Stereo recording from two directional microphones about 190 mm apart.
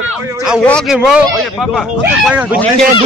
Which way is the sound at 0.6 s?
Centre (ahead or behind).